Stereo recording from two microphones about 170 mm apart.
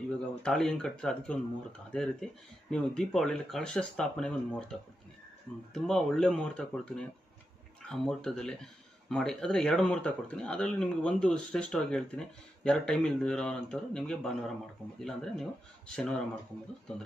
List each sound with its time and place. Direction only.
0.4 s speech: centre (ahead or behind)